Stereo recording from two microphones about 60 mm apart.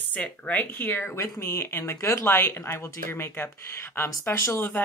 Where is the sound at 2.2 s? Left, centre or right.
Left.